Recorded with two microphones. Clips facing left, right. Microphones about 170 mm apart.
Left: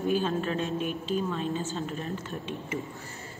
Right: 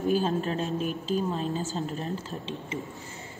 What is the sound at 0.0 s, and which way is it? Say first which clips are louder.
A woman's voice: right 1 dB; 40° right (ahead or behind).